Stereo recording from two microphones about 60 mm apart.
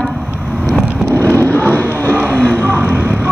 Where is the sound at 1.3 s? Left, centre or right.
Right.